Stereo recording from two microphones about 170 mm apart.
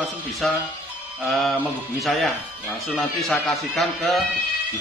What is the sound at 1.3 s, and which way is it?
Speech, centre (ahead or behind).